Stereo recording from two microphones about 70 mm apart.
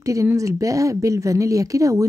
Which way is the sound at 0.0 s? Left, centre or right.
Right.